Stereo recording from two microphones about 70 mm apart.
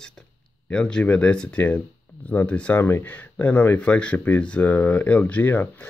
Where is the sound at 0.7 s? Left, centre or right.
Centre.